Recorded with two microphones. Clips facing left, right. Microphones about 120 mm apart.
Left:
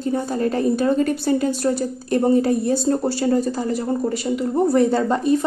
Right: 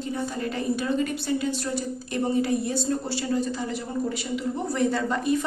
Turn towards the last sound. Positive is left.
turn(degrees=35)  # may be behind; listen again after turning